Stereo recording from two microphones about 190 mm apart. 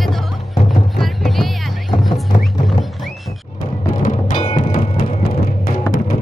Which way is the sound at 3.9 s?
45° left (ahead or behind).